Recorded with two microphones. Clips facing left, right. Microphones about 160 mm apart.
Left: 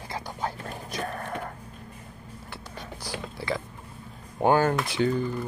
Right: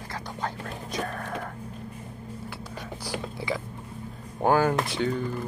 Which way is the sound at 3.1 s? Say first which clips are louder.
Even; 15° right (ahead or behind).